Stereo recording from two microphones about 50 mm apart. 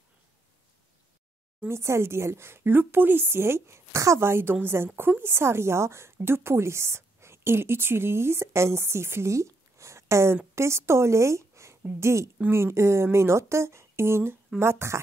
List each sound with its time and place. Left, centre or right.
1.7 s speech: right
4.3 s a woman's voice: right
12.4 s speech: right